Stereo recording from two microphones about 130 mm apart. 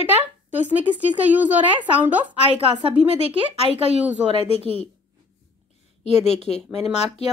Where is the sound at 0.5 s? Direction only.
15° right (ahead or behind).